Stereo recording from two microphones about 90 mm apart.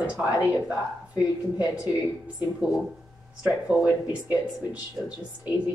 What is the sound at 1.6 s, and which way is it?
Speech, 15° right (ahead or behind).